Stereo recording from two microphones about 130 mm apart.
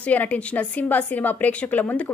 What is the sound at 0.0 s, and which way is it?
A woman's voice, 10° left (ahead or behind).